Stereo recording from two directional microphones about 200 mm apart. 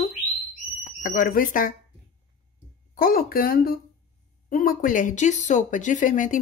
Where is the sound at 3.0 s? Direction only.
45° left (ahead or behind).